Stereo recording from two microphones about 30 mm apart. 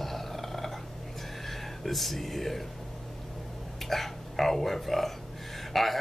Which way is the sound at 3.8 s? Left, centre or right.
Centre.